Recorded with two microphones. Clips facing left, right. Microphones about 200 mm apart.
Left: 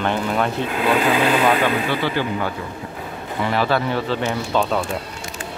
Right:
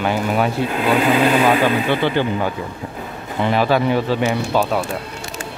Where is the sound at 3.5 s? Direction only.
15° right (ahead or behind).